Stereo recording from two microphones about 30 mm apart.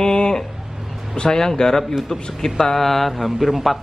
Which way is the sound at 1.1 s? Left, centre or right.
Left.